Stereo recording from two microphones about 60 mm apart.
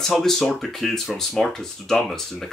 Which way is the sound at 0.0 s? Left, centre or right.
Centre.